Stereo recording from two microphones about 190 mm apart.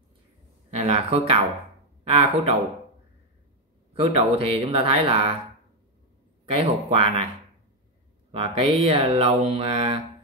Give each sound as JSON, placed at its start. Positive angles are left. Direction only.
{"t": 0.7, "sound": "speech", "side_deg": -35}
{"t": 2.0, "sound": "mantra", "side_deg": -35}
{"t": 3.9, "sound": "mantra", "side_deg": -30}
{"t": 6.5, "sound": "mantra", "side_deg": -30}
{"t": 8.3, "sound": "mantra", "side_deg": -30}